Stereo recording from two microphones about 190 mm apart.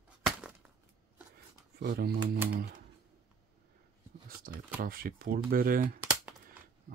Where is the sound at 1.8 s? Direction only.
55° right (ahead or behind).